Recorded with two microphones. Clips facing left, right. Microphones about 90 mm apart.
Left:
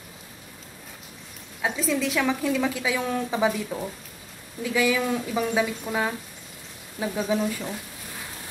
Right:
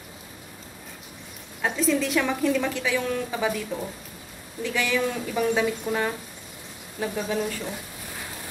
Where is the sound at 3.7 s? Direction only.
10° left (ahead or behind).